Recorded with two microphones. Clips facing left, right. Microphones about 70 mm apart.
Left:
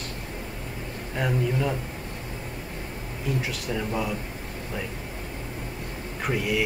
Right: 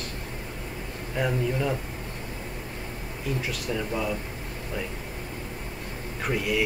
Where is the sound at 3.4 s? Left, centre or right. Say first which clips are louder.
Even; centre.